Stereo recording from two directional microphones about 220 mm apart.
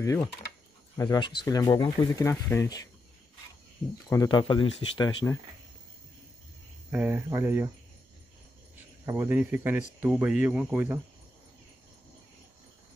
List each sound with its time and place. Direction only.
0.0 s speech: 15° left (ahead or behind)
4.1 s speech: 20° left (ahead or behind)
6.9 s speech: 10° right (ahead or behind)
9.0 s speech: 10° right (ahead or behind)